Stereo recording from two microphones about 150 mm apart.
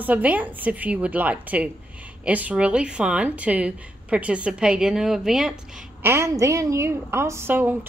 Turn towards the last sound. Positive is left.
turn(degrees=-10)  # may be behind; listen again after turning